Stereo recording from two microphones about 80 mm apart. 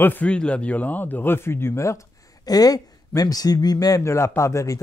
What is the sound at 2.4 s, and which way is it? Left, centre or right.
Speech, left.